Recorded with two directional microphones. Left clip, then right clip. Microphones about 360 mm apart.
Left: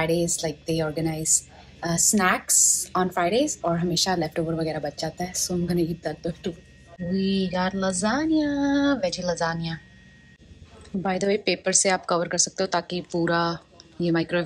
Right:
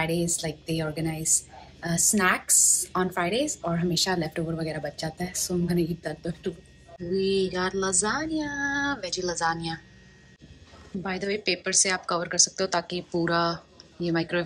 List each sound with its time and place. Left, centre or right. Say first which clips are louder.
0.0 s a woman's voice: left 4 dB; centre
11.0 s a woman's voice: left 6 dB; centre